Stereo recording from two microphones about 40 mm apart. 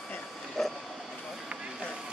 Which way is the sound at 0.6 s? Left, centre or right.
Centre.